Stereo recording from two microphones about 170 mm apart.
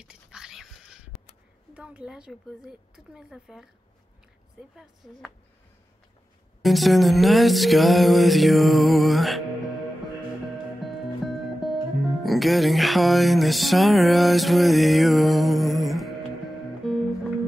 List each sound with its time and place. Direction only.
0.0 s dog: 5° right (ahead or behind)
1.7 s music: 5° right (ahead or behind)
4.7 s music: centre (ahead or behind)
6.6 s music: centre (ahead or behind)
10.8 s speech: centre (ahead or behind)
16.8 s music: centre (ahead or behind)